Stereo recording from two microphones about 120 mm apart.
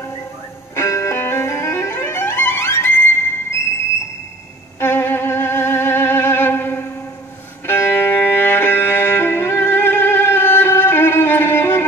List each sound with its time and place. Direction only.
0.7 s music: 25° left (ahead or behind)
4.7 s violin: 20° left (ahead or behind)
7.6 s music: 20° left (ahead or behind)